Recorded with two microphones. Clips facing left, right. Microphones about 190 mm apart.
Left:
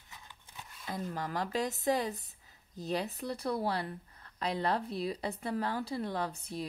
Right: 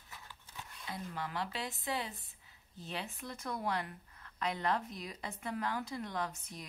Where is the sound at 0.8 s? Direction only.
45° left (ahead or behind).